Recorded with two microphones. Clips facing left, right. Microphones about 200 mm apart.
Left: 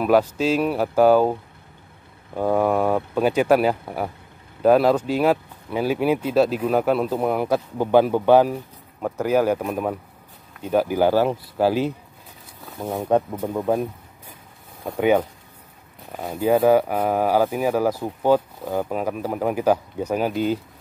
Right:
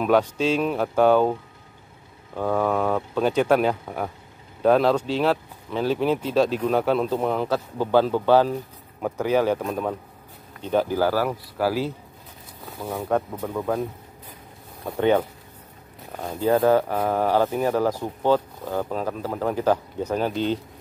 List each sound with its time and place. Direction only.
0.0 s speech: 5° left (ahead or behind)
11.0 s speech: 20° left (ahead or behind)
14.9 s speech: 10° left (ahead or behind)